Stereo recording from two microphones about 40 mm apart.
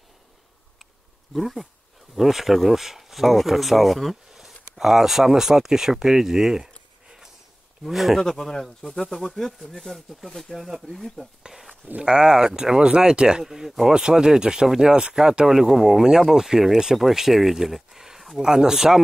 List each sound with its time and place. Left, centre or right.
1.3 s speech: centre
4.3 s a sound: centre
4.7 s speech: centre
7.8 s speech: centre
8.2 s speech: centre
11.5 s speech: centre
13.4 s speech: centre
13.9 s speech: centre